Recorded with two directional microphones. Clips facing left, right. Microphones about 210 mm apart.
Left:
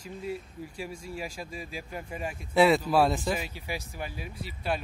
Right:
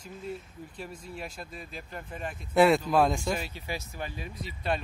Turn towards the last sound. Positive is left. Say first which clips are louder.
# even
turn(degrees=5)  # may be behind; listen again after turning